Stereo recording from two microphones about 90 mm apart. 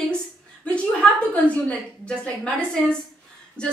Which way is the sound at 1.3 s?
15° left (ahead or behind).